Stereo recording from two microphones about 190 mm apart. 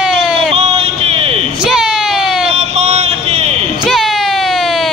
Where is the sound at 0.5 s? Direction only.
30° right (ahead or behind).